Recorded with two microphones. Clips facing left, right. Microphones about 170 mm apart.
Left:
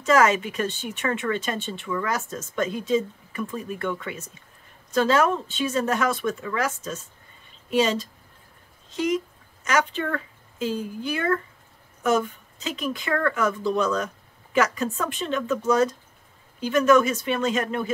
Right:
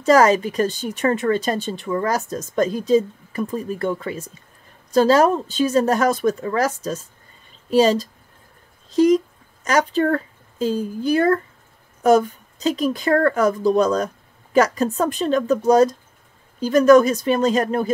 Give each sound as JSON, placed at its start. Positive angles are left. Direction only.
{"t": 0.0, "sound": "speech", "side_deg": -35}